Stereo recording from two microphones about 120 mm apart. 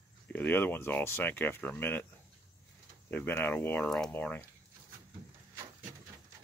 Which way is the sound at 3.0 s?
15° left (ahead or behind).